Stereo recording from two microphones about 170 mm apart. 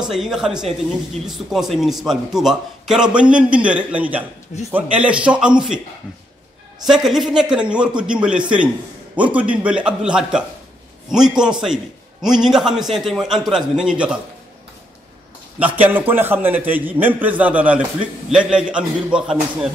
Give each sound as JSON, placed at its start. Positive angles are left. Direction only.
{"t": 0.1, "sound": "a man's voice", "side_deg": -5}
{"t": 6.9, "sound": "a man's voice", "side_deg": 0}
{"t": 15.6, "sound": "a man's voice", "side_deg": -10}